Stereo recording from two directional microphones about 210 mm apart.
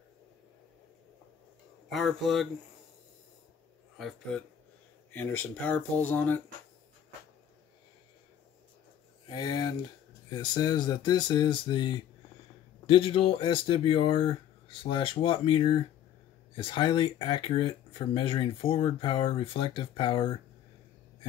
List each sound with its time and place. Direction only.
1.9 s a man's voice: centre (ahead or behind)
4.0 s a man's voice: 5° left (ahead or behind)
9.3 s speech: 20° left (ahead or behind)